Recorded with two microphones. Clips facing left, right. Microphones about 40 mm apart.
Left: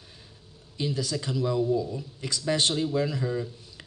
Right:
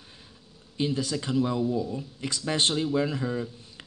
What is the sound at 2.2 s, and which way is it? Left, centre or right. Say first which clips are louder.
Speech: left 1 dB; right.